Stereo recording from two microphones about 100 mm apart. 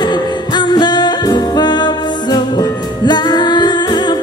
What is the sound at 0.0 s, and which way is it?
Music, 45° left (ahead or behind).